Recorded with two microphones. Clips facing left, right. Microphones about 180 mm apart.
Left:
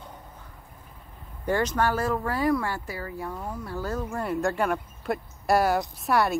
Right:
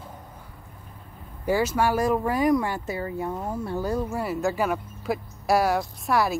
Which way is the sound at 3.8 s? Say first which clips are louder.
Right 1 dB; 10° right (ahead or behind).